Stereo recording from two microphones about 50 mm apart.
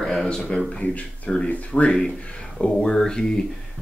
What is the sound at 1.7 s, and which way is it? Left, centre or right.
Speech, centre.